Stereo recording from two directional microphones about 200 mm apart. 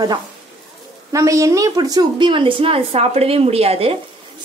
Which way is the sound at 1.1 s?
15° right (ahead or behind).